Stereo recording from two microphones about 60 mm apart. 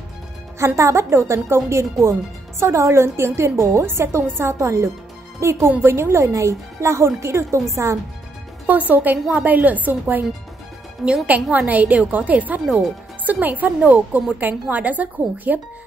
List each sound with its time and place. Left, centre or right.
0.6 s a woman's voice: right
5.7 s a woman's voice: right
8.6 s a woman's voice: right
11.0 s a woman's voice: centre
11.5 s a woman's voice: right